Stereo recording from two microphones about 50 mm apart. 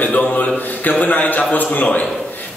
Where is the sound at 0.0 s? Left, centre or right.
Left.